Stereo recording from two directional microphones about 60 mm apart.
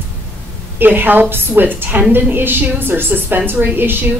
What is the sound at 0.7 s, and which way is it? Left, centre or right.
A woman's voice, right.